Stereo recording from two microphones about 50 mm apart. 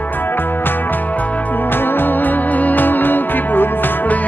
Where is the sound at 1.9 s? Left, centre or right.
Left.